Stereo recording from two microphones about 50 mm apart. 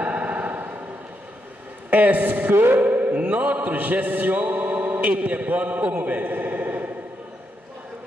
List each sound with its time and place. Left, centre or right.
0.0 s music: right
1.9 s a man's voice: right
2.5 s music: right
2.8 s mantra: right